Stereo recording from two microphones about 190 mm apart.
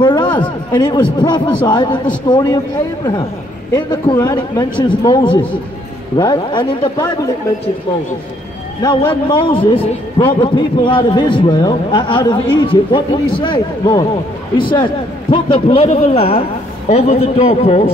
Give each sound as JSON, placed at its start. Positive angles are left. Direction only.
{"t": 0.0, "sound": "a man's voice", "side_deg": 25}
{"t": 3.7, "sound": "a man's voice", "side_deg": 20}
{"t": 8.8, "sound": "a man's voice", "side_deg": 25}